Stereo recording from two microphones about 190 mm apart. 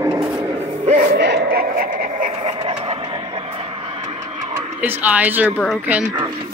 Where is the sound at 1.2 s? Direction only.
60° right (ahead or behind).